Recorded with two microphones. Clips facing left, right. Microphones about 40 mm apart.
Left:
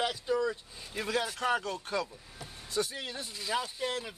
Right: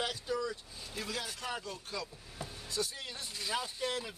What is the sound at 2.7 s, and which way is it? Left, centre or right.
Speech, left.